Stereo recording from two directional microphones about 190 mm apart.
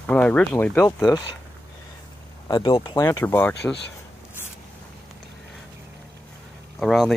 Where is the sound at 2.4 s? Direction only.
25° left (ahead or behind).